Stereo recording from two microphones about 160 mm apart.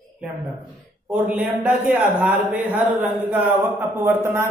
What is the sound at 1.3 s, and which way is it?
A man's voice, 10° right (ahead or behind).